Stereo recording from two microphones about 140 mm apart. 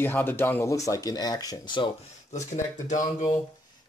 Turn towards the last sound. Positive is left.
turn(degrees=60)  # may be behind; listen again after turning